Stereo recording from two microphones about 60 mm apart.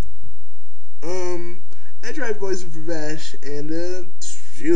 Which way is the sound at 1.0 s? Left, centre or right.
Centre.